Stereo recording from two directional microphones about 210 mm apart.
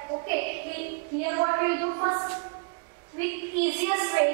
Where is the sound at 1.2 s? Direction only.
20° right (ahead or behind).